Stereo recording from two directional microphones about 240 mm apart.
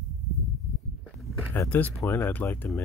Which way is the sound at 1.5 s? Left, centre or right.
Centre.